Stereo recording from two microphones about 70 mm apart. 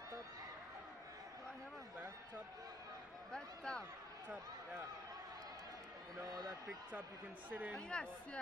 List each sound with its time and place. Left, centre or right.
3.3 s a sound: centre
6.1 s a man's voice: right
6.9 s a man's voice: right
7.7 s speech: centre